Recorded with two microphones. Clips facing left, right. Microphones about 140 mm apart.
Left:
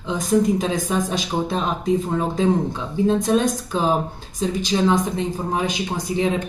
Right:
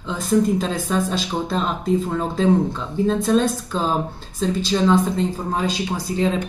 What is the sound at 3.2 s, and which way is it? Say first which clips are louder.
Speech: right 1 dB; 10° left (ahead or behind).